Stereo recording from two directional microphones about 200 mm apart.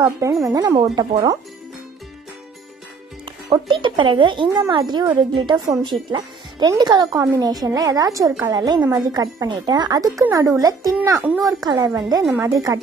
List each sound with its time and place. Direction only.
0.0 s a woman's voice: 15° right (ahead or behind)
3.4 s a woman's voice: 25° right (ahead or behind)